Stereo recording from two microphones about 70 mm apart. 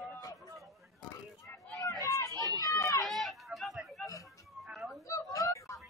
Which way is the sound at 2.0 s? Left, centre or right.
Left.